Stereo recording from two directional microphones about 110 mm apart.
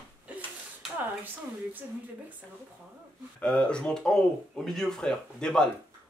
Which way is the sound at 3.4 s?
10° left (ahead or behind).